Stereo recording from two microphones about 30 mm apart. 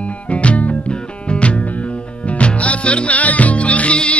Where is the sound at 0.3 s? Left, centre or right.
Left.